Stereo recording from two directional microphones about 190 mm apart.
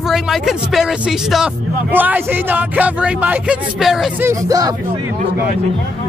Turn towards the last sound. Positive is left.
turn(degrees=-20)  # may be behind; listen again after turning